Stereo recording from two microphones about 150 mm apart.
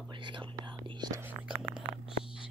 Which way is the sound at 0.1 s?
30° right (ahead or behind).